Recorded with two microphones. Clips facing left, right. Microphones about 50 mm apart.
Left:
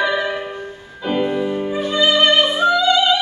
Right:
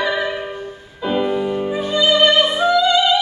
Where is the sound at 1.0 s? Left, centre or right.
Centre.